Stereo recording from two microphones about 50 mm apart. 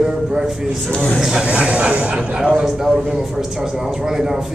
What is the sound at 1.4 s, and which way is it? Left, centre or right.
Speech, right.